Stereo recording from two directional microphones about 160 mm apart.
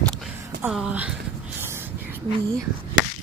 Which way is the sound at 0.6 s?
5° right (ahead or behind).